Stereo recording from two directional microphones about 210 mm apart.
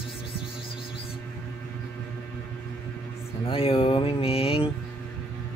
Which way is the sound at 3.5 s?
25° left (ahead or behind).